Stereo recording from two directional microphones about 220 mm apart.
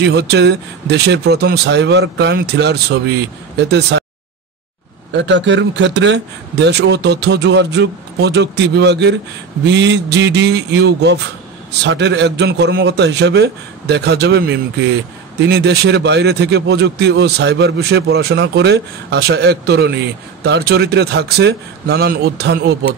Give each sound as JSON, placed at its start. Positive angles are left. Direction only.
{"t": 0.0, "sound": "a man's voice", "side_deg": -50}
{"t": 5.1, "sound": "a man's voice", "side_deg": -55}